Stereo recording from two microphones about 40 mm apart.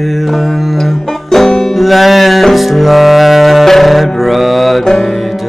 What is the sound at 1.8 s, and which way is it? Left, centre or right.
Music, centre.